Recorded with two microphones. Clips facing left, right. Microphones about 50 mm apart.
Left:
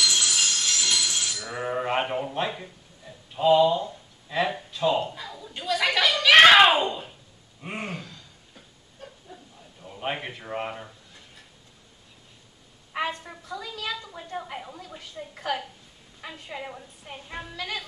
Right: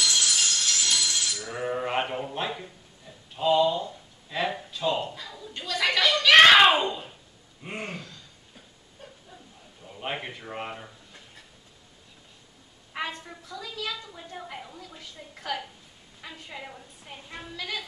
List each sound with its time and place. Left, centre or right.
0.0 s train: left
1.5 s a woman's voice: centre
7.6 s a sound: centre
9.8 s a sound: centre
10.1 s a woman's voice: centre
13.2 s a woman's voice: centre